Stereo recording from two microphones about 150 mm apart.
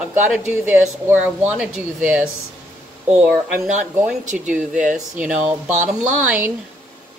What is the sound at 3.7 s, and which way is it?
Speech, 55° right (ahead or behind).